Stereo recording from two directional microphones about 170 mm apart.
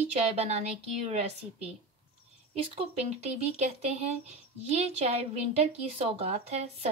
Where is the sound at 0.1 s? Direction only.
40° right (ahead or behind).